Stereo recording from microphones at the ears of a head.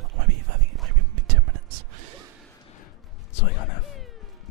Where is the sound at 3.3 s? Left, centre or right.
Left.